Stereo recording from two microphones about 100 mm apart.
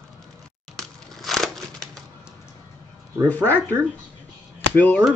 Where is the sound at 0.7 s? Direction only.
Centre (ahead or behind).